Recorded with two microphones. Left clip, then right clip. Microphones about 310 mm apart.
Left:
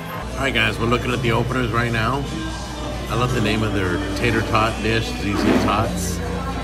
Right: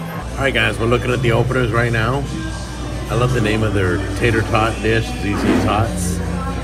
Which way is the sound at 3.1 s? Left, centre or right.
Centre.